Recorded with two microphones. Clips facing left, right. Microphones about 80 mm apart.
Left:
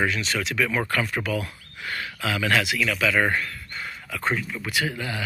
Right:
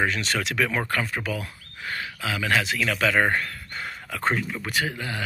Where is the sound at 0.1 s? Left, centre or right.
Right.